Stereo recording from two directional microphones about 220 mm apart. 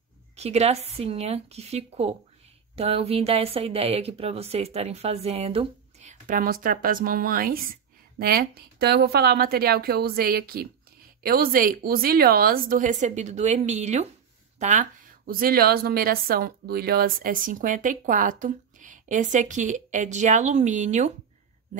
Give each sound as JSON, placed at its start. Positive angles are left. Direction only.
{"t": 0.4, "sound": "speech", "side_deg": -30}